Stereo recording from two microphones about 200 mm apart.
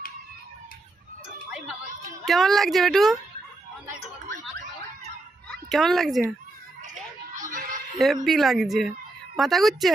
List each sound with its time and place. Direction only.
2.2 s speech: centre (ahead or behind)
5.5 s speech: centre (ahead or behind)
6.8 s children playing: 40° right (ahead or behind)
8.0 s speech: centre (ahead or behind)